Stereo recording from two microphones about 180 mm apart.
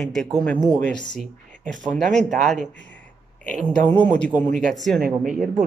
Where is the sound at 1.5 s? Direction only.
45° right (ahead or behind).